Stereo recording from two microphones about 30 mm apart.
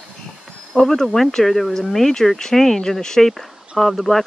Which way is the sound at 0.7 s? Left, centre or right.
Centre.